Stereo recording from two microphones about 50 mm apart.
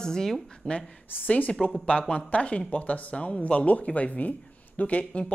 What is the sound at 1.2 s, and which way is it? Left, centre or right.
Speech, left.